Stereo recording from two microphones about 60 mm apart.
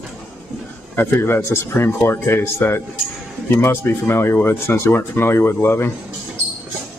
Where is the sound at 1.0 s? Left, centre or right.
Left.